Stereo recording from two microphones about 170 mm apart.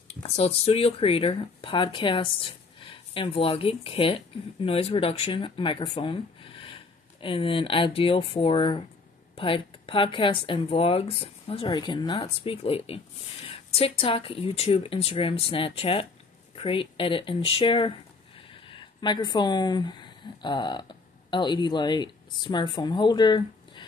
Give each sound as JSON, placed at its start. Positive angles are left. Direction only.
{"t": 0.1, "sound": "speech", "side_deg": 35}